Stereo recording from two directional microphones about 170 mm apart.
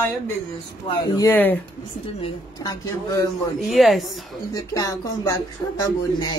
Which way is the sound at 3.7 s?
Centre (ahead or behind).